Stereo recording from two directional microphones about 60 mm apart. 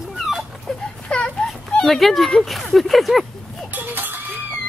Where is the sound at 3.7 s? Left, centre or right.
Right.